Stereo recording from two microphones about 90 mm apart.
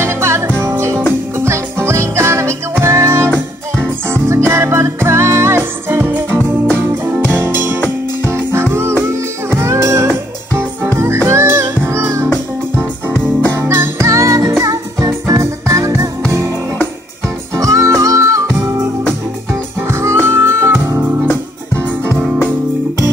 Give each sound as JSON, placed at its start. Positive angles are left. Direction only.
{"t": 0.0, "sound": "music", "side_deg": -30}
{"t": 3.3, "sound": "music", "side_deg": 15}
{"t": 4.1, "sound": "music", "side_deg": -30}
{"t": 13.6, "sound": "music", "side_deg": -30}
{"t": 17.6, "sound": "music", "side_deg": -40}
{"t": 19.9, "sound": "music", "side_deg": -30}